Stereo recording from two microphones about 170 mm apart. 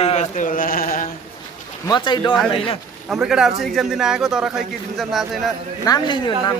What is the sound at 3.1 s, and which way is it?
A man's voice, 5° right (ahead or behind).